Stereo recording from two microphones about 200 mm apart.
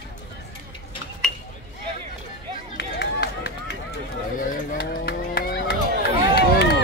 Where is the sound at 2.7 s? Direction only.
60° left (ahead or behind).